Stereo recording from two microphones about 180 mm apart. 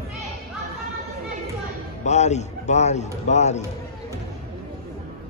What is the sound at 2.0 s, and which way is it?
A man's voice, 40° left (ahead or behind).